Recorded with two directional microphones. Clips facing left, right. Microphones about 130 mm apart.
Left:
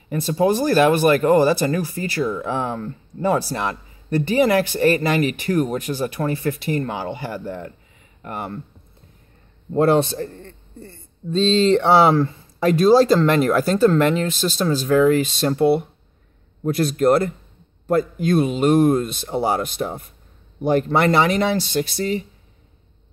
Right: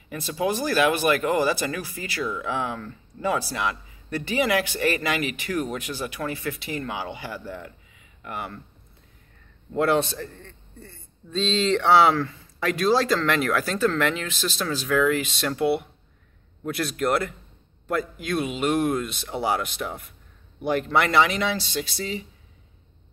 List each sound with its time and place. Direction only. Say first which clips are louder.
0.1 s speech: left 7 dB; 40° left (ahead or behind)
9.8 s a man's voice: left 5 dB; 35° left (ahead or behind); by 22.2 s 55° left (ahead or behind)